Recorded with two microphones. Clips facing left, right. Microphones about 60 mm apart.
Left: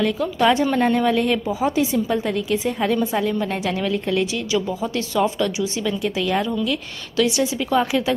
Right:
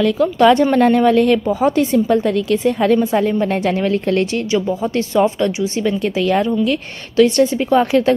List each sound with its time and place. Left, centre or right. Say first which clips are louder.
0.4 s a woman's voice: right 6 dB; right
4.9 s speech: right 5 dB; right
5.9 s a woman's voice: right 6 dB; right